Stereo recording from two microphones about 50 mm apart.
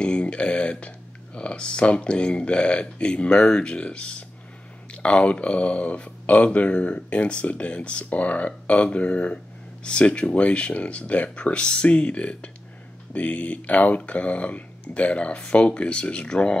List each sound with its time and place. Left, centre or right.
0.0 s speech: left